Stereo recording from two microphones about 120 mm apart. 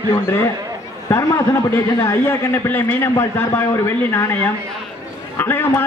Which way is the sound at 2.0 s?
25° left (ahead or behind).